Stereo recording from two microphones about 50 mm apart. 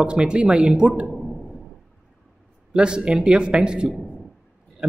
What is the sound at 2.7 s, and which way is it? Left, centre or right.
Speech, centre.